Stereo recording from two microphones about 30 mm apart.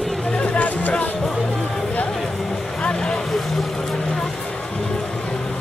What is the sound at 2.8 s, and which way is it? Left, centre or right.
Vehicle, left.